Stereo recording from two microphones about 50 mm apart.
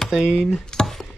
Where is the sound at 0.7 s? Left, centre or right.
Centre.